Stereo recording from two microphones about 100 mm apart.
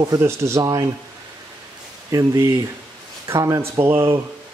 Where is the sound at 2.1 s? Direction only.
35° right (ahead or behind).